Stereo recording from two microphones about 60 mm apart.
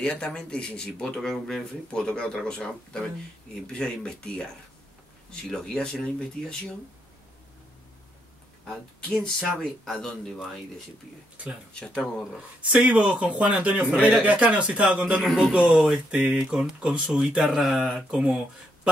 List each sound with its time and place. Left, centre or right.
0.0 s speech: centre
8.6 s speech: centre
11.7 s speech: centre
12.6 s speech: right
15.2 s a man's voice: centre
16.1 s speech: centre